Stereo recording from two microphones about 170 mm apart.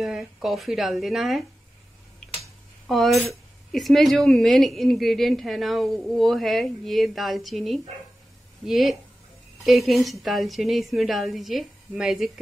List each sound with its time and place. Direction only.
0.0 s speech: centre (ahead or behind)
2.9 s speech: centre (ahead or behind)